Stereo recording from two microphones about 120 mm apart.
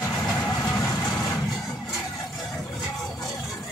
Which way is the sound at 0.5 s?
30° left (ahead or behind).